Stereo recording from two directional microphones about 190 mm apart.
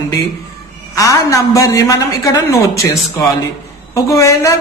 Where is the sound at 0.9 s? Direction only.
15° left (ahead or behind).